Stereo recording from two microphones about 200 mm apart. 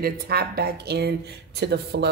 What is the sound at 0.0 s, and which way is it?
Speech, 50° right (ahead or behind).